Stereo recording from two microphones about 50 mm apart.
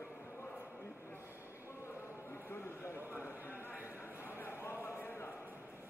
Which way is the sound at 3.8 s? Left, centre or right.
Left.